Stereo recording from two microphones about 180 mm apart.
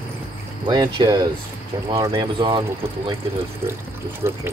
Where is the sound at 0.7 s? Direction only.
20° right (ahead or behind).